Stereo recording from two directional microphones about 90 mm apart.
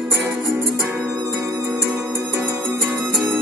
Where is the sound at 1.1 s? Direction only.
45° right (ahead or behind).